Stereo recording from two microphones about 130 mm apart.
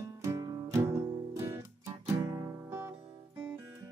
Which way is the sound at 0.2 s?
25° right (ahead or behind).